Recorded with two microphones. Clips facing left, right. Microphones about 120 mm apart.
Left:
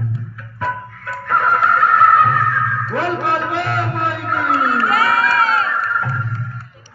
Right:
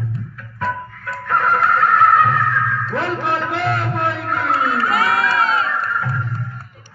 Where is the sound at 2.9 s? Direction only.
5° left (ahead or behind).